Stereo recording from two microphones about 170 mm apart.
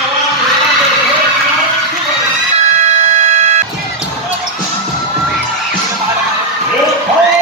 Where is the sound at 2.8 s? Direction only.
40° right (ahead or behind).